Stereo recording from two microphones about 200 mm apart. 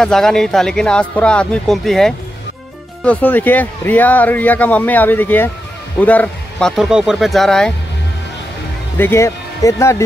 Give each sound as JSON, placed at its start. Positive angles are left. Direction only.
{"t": 0.0, "sound": "speech", "side_deg": 5}
{"t": 8.9, "sound": "speech", "side_deg": 10}